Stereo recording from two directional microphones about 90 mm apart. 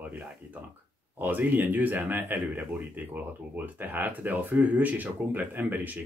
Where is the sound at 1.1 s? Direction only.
20° right (ahead or behind).